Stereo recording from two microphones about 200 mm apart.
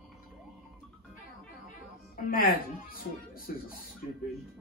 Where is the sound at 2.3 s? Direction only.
45° left (ahead or behind).